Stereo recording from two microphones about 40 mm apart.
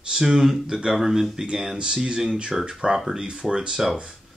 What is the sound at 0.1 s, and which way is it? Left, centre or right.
Speech, centre.